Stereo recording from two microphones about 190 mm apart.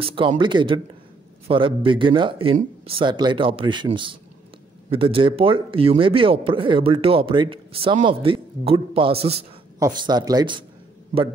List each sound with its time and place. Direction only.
0.0 s a man's voice: 25° right (ahead or behind)